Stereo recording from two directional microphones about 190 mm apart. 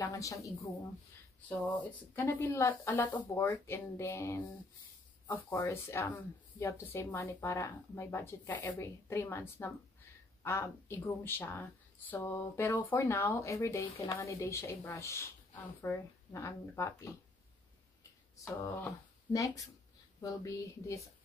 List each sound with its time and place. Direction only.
0.0 s speech: 15° left (ahead or behind)
1.9 s speech: 10° left (ahead or behind)
18.4 s speech: 10° left (ahead or behind)